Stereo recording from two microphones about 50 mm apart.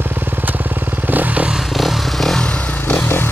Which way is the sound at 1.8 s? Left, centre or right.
Centre.